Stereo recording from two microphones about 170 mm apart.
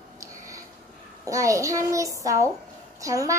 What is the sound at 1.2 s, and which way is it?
A child's voice, 20° right (ahead or behind).